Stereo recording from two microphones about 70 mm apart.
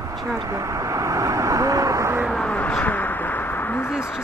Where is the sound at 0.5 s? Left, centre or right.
Right.